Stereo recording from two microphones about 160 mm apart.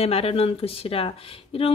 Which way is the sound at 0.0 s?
35° left (ahead or behind).